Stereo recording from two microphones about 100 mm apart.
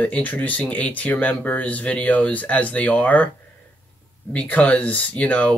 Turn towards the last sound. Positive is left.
turn(degrees=15)  # may be behind; listen again after turning